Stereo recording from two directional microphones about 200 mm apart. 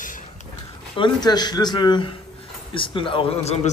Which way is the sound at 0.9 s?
25° left (ahead or behind).